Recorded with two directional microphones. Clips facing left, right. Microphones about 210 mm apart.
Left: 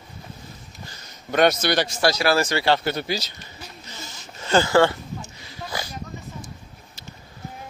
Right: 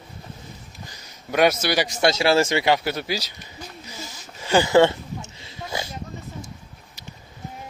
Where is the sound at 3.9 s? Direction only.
10° right (ahead or behind).